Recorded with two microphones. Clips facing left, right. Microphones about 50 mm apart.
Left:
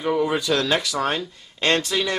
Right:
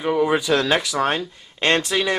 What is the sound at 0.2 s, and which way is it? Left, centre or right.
Speech, centre.